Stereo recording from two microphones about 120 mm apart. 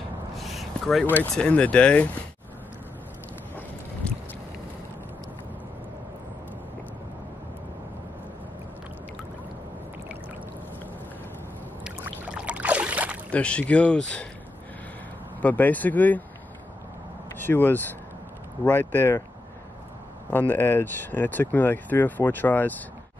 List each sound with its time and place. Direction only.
0.4 s a sound: centre (ahead or behind)
1.3 s speech: 10° left (ahead or behind)
4.0 s boat: 10° left (ahead or behind)
12.3 s a sound: 10° right (ahead or behind)
13.3 s speech: 10° left (ahead or behind)
15.4 s speech: 15° left (ahead or behind)
17.5 s speech: 15° left (ahead or behind)
20.2 s speech: 15° left (ahead or behind)